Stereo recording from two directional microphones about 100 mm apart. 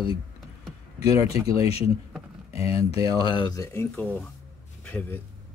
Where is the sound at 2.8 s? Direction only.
35° right (ahead or behind).